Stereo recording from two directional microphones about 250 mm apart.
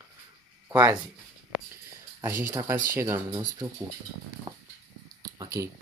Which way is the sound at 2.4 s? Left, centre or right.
Centre.